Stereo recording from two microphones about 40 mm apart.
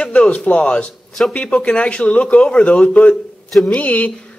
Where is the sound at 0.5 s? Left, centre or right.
Left.